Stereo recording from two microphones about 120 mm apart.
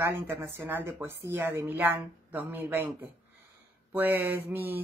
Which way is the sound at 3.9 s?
15° right (ahead or behind).